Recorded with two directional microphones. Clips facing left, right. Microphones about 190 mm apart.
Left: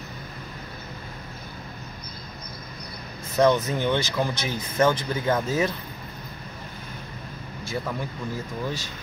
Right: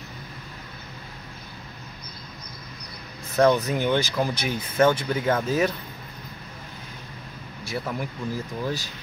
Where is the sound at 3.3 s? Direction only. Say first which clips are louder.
Right 1 dB; 10° right (ahead or behind).